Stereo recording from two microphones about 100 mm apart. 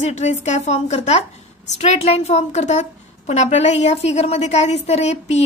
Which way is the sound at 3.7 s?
90° left.